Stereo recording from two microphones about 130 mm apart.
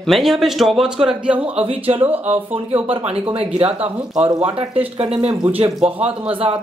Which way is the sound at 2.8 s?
45° right (ahead or behind).